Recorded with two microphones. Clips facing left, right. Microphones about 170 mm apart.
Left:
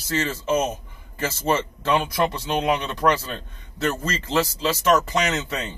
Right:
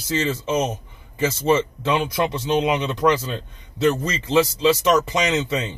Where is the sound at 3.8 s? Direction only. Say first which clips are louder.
Right 5 dB; 15° right (ahead or behind).